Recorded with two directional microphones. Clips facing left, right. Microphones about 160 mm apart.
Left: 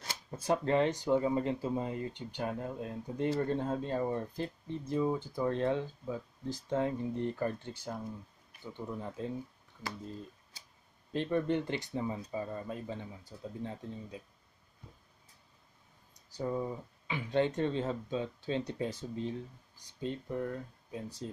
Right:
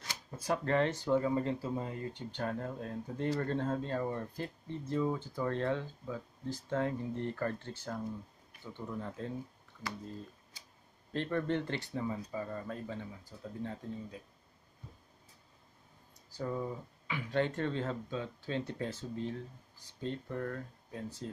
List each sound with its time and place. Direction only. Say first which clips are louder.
0.0 s speech: left 2 dB; 25° left (ahead or behind)
11.1 s speech: left 2 dB; 15° left (ahead or behind)
16.3 s speech: left 2 dB; 20° left (ahead or behind)